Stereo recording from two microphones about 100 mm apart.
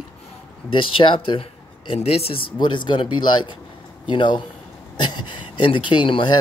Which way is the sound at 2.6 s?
50° left (ahead or behind).